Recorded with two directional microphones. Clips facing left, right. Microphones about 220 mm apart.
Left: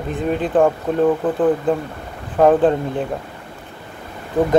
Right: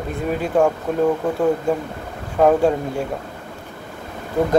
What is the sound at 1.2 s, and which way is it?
Speech, 10° right (ahead or behind).